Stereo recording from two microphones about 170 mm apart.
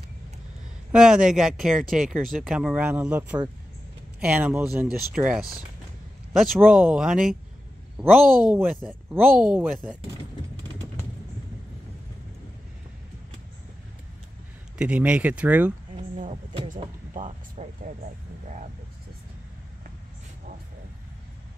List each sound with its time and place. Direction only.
0.9 s speech: 5° right (ahead or behind)
8.5 s speech: 5° right (ahead or behind)
14.8 s speech: 5° right (ahead or behind)
16.6 s speech: 50° right (ahead or behind)